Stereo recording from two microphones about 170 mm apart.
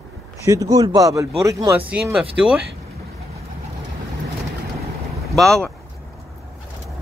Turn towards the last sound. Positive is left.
turn(degrees=0)  # may be behind; listen again after turning